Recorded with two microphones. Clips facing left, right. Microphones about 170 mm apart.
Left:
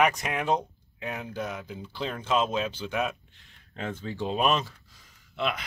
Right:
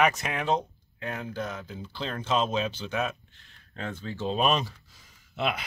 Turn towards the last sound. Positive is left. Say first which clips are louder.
# right 1 dB
turn(degrees=-10)  # may be behind; listen again after turning